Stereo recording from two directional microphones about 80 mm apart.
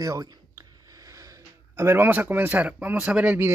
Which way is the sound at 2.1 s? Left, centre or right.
Right.